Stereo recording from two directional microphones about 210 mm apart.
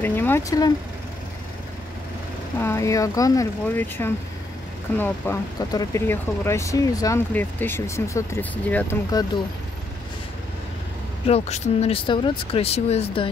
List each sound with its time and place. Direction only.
0.0 s speech: 10° left (ahead or behind)
2.6 s speech: 15° left (ahead or behind)
9.1 s speech: 20° left (ahead or behind)
11.2 s speech: 30° left (ahead or behind)